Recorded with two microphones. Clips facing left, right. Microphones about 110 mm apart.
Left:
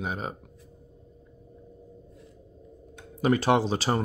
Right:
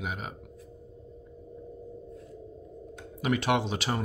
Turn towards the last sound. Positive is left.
turn(degrees=35)  # may be behind; listen again after turning